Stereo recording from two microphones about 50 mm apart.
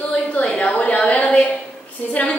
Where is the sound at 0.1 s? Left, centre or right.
Left.